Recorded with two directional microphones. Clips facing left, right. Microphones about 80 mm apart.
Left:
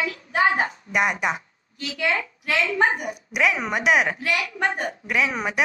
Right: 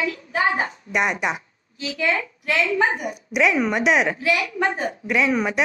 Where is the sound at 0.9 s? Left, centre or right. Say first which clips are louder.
Right 1 dB; centre.